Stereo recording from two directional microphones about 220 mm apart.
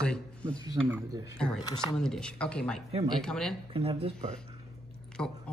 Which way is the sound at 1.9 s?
5° left (ahead or behind).